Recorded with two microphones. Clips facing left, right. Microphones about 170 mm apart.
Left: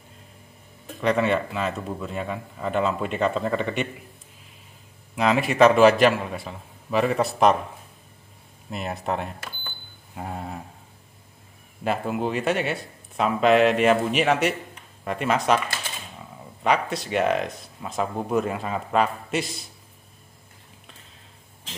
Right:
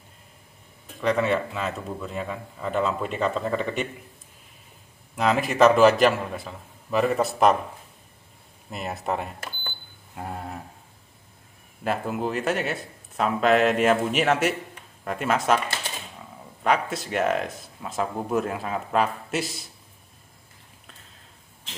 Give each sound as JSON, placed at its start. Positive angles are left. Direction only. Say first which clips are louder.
{"t": 1.0, "sound": "speech", "louder": "left 1 dB", "side_deg": 0}
{"t": 5.1, "sound": "speech", "louder": "left 1 dB", "side_deg": 0}
{"t": 8.6, "sound": "speech", "louder": "left 1 dB", "side_deg": 0}
{"t": 11.8, "sound": "speech", "louder": "left 1 dB", "side_deg": 0}
{"t": 16.6, "sound": "speech", "louder": "left 1 dB", "side_deg": 0}